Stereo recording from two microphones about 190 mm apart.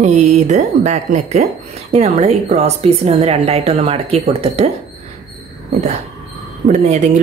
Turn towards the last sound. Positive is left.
turn(degrees=-35)  # may be behind; listen again after turning